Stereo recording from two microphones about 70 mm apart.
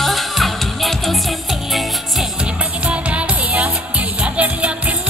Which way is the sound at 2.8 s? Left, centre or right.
Centre.